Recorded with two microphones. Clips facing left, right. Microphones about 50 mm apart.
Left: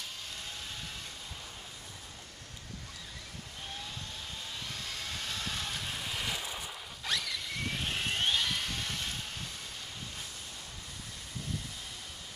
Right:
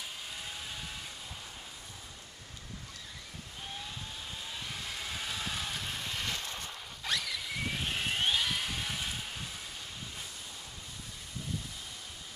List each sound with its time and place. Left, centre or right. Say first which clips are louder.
4.6 s vehicle: right 1 dB; centre